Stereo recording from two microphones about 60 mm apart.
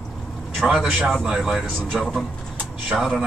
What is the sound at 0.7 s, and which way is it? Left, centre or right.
Speech, centre.